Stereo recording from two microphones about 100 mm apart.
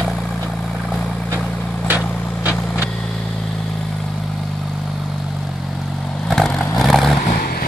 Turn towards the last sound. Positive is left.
turn(degrees=0)  # may be behind; listen again after turning